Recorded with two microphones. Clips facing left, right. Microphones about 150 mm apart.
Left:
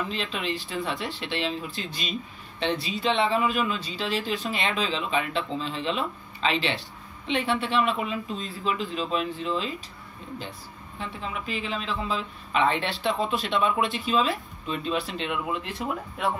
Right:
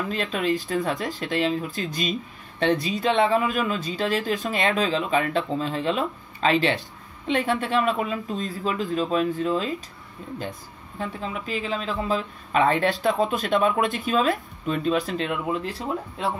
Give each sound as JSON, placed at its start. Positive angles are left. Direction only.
{"t": 0.1, "sound": "speech", "side_deg": -45}
{"t": 11.0, "sound": "speech", "side_deg": -40}